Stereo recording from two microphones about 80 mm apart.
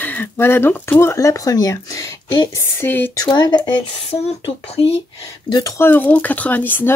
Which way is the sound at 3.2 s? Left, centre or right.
Left.